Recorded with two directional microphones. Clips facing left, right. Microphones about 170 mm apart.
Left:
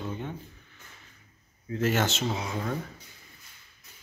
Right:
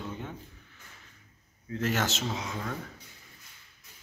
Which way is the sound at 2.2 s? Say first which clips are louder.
Left 4 dB; 10° left (ahead or behind).